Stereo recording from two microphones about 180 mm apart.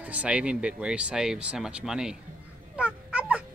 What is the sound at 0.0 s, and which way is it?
Speech, 10° right (ahead or behind).